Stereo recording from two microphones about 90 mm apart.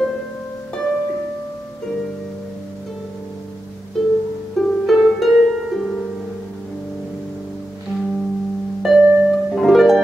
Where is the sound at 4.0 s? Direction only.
5° left (ahead or behind).